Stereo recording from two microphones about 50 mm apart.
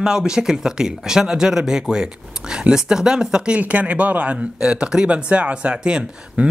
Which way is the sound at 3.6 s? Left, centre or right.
Right.